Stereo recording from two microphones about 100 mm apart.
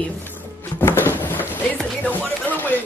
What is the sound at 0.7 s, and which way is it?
Music, 20° left (ahead or behind).